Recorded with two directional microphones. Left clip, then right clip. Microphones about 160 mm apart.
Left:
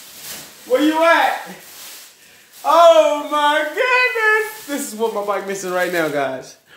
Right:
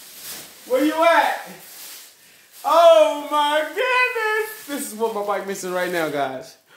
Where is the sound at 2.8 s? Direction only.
25° right (ahead or behind).